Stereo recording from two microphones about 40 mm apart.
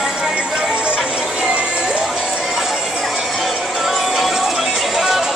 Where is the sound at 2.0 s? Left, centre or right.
Centre.